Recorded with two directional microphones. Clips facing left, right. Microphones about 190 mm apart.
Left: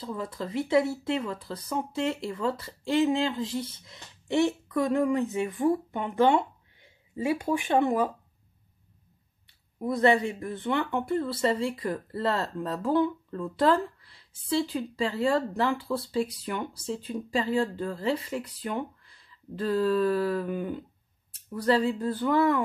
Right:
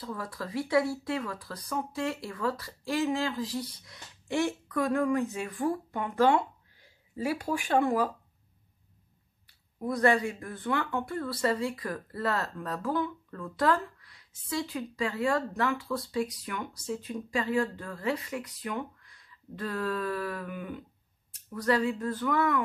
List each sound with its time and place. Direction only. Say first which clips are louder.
0.0 s speech: left 3 dB; 20° left (ahead or behind)
9.8 s speech: left 2 dB; 25° left (ahead or behind)